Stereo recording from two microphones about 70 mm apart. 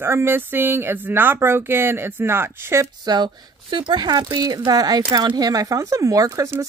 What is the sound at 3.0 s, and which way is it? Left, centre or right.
Speech, right.